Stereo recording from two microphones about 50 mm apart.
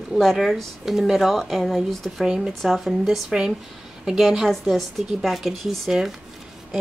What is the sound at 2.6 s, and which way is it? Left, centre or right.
Speech, centre.